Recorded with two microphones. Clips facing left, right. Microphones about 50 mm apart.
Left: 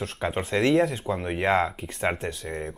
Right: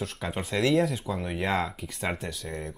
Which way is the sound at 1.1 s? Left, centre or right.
Left.